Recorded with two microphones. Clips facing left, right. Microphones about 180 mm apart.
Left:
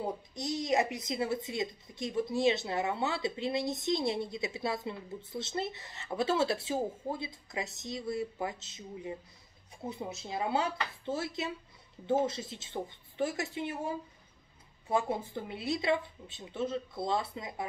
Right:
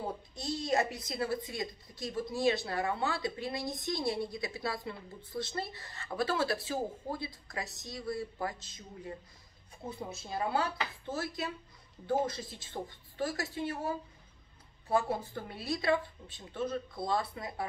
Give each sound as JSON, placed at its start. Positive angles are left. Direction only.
{"t": 0.3, "sound": "speech", "side_deg": 20}